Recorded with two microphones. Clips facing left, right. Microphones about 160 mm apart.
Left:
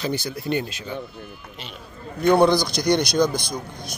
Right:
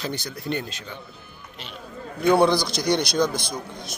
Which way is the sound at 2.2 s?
5° right (ahead or behind).